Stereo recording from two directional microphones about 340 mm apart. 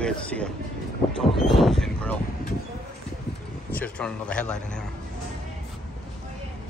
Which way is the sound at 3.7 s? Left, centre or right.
Centre.